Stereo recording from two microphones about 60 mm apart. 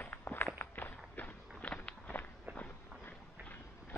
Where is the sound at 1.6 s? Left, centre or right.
Centre.